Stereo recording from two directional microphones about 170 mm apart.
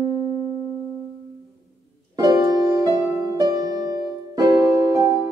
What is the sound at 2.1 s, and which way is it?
Music, 25° right (ahead or behind).